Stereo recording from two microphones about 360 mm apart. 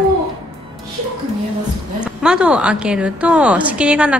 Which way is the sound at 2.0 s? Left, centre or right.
Centre.